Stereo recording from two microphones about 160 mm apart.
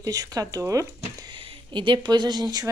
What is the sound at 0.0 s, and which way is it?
Speech, 20° right (ahead or behind).